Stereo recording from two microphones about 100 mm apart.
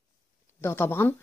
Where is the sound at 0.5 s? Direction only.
25° left (ahead or behind).